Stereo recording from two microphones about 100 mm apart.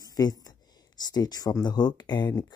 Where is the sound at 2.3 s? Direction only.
35° left (ahead or behind).